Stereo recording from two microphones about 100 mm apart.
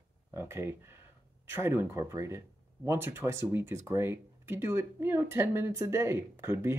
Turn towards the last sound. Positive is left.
turn(degrees=-25)  # may be behind; listen again after turning